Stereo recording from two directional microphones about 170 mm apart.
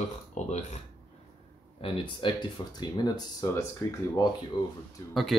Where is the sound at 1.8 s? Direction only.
30° left (ahead or behind).